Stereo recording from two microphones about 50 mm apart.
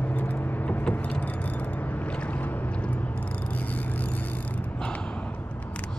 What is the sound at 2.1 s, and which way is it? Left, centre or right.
Boat, left.